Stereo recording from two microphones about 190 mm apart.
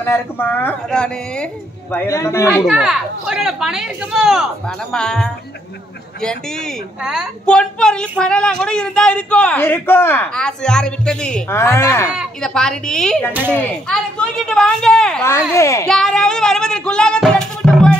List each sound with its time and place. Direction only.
0.0 s speech: 10° left (ahead or behind)
2.6 s a woman's voice: centre (ahead or behind)
7.0 s a woman's voice: 5° right (ahead or behind); by 12.1 s 15° left (ahead or behind)
12.1 s a woman's voice: centre (ahead or behind)
13.3 s a child's voice: 10° right (ahead or behind)
13.6 s a woman's voice: 10° left (ahead or behind)
15.2 s speech: 15° left (ahead or behind)
15.9 s speech: centre (ahead or behind)